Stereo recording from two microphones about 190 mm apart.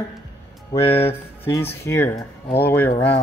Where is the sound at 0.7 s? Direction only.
30° left (ahead or behind).